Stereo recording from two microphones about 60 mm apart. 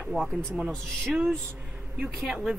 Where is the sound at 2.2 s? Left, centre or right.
Centre.